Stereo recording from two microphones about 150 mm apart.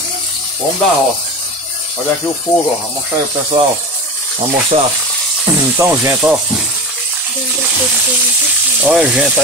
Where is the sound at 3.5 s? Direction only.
25° right (ahead or behind).